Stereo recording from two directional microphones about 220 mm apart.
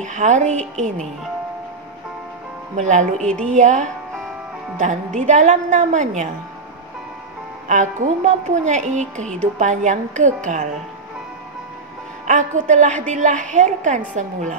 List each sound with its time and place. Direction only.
0.0 s a woman's voice: 35° right (ahead or behind)
2.7 s a woman's voice: 35° right (ahead or behind)
7.6 s a woman's voice: 35° right (ahead or behind)
12.3 s a woman's voice: 35° right (ahead or behind)